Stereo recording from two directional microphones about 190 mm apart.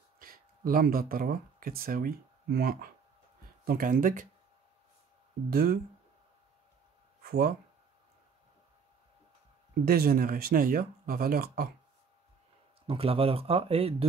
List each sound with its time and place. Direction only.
0.2 s speech: 50° right (ahead or behind)
5.5 s speech: 50° right (ahead or behind)
7.2 s speech: 50° right (ahead or behind)
9.8 s speech: 50° right (ahead or behind)
12.8 s speech: 30° right (ahead or behind)